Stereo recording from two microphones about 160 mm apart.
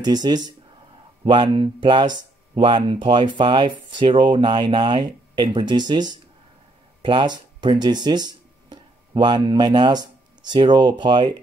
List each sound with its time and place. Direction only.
0.0 s speech: 25° right (ahead or behind)